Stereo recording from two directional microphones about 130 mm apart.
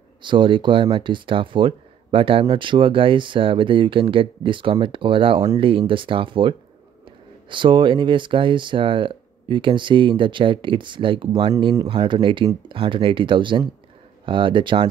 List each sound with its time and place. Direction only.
0.2 s speech: 40° right (ahead or behind)
11.7 s speech: 25° right (ahead or behind)
12.0 s speech: 40° right (ahead or behind)